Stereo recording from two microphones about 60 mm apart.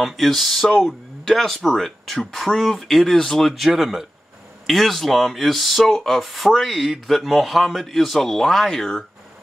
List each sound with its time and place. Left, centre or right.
0.0 s speech: centre